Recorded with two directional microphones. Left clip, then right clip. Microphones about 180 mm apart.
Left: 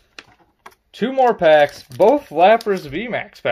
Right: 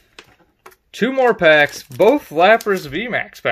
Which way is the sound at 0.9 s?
30° right (ahead or behind).